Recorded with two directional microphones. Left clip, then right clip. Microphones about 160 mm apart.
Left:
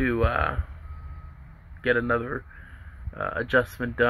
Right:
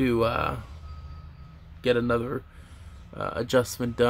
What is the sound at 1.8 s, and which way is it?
Speech, 35° right (ahead or behind).